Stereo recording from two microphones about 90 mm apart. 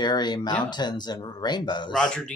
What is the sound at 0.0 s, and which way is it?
Speech, 55° left (ahead or behind).